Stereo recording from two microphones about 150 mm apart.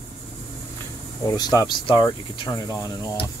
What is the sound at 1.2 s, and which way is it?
Speech, 20° left (ahead or behind).